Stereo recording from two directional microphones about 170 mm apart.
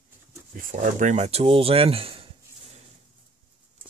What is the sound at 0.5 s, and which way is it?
Speech, 45° right (ahead or behind).